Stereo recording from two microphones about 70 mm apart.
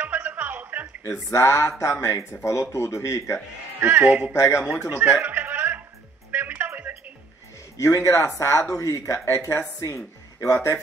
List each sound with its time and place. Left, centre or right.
0.0 s music: right
1.3 s a man's voice: left
3.8 s speech: right
4.3 s speech: left
5.2 s music: right
7.7 s a man's voice: left